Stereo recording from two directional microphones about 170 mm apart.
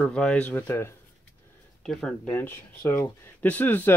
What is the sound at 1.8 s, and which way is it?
Speech, 5° left (ahead or behind).